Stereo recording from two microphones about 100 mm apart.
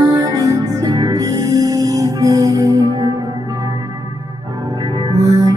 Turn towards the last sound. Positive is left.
turn(degrees=-35)  # may be behind; listen again after turning